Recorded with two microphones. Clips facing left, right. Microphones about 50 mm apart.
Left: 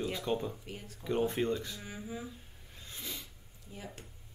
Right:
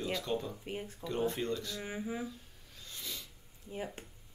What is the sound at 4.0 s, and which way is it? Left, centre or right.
Speech, right.